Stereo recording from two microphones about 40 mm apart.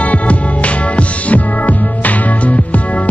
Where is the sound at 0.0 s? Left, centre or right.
Left.